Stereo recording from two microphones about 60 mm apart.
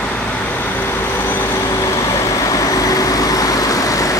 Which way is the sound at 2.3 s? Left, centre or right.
Left.